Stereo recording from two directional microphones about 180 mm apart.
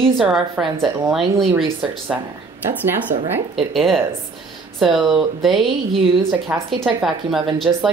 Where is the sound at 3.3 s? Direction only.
Centre (ahead or behind).